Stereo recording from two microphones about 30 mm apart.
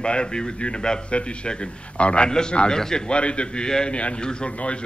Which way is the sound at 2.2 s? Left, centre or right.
Left.